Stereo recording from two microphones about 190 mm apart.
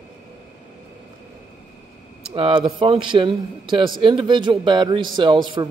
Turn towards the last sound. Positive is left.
turn(degrees=-25)  # may be behind; listen again after turning